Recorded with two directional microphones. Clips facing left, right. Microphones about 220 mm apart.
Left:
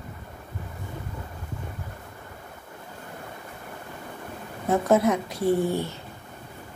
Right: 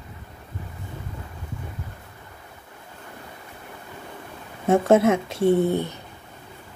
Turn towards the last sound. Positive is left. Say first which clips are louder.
# right 4 dB
turn(degrees=-20)  # may be behind; listen again after turning